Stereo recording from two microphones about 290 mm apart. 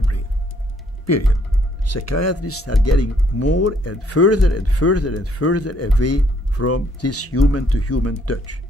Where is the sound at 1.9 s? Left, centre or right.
Left.